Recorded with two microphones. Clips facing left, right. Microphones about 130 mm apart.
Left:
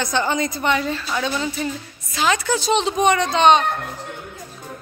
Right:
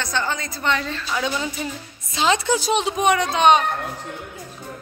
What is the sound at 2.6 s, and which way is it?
Speech, 10° right (ahead or behind).